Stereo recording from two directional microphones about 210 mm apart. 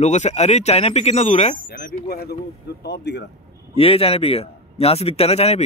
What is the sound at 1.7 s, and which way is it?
Speech, 45° left (ahead or behind).